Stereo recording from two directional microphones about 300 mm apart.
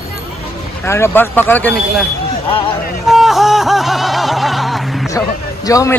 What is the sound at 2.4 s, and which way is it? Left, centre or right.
Speech, centre.